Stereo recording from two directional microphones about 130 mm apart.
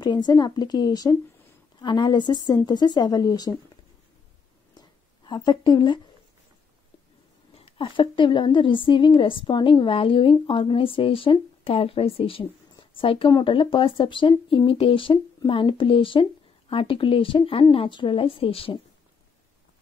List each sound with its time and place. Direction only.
0.0 s a woman's voice: 35° left (ahead or behind)
4.7 s a sound: 35° left (ahead or behind)
7.5 s a woman's voice: 45° left (ahead or behind)